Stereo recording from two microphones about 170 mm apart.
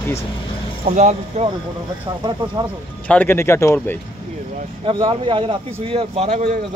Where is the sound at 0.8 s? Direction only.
45° right (ahead or behind).